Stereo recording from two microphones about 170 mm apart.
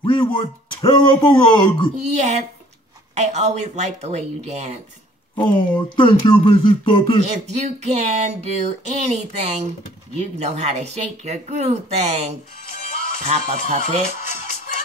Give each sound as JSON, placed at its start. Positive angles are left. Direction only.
{"t": 0.0, "sound": "speech", "side_deg": 25}
{"t": 2.0, "sound": "speech", "side_deg": -40}
{"t": 5.3, "sound": "speech", "side_deg": 30}
{"t": 7.2, "sound": "speech", "side_deg": -40}